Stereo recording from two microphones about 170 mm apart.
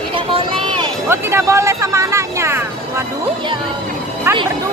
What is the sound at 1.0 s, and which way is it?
Speech, 15° right (ahead or behind).